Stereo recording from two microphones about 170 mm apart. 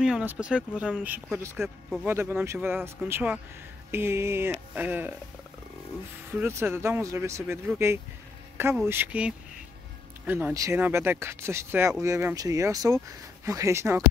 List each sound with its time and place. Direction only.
0.0 s speech: 5° right (ahead or behind)
6.3 s speech: 10° right (ahead or behind)